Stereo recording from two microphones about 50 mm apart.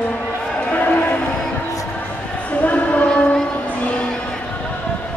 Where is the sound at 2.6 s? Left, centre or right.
Left.